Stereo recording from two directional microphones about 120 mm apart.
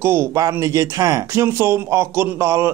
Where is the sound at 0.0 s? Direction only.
20° right (ahead or behind).